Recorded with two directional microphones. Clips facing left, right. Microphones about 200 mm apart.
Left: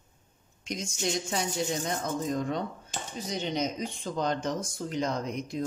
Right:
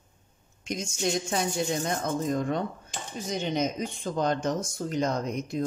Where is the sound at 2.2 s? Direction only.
50° right (ahead or behind).